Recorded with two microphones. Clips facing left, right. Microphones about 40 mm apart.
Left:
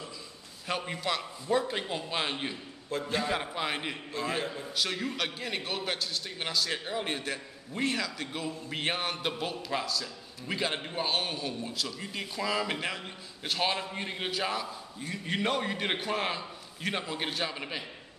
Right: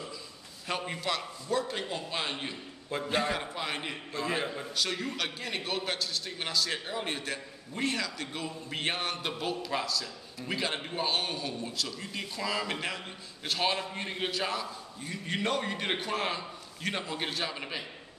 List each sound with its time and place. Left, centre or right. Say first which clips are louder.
0.7 s a man's voice: left 1 dB; centre
1.5 s speech: left 2 dB; centre
2.9 s a man's voice: right 1 dB; centre
3.3 s a man's voice: left 2 dB; centre